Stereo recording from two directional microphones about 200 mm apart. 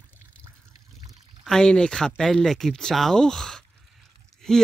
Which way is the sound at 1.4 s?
5° left (ahead or behind).